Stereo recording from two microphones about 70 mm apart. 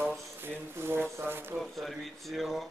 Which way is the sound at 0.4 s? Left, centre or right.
Right.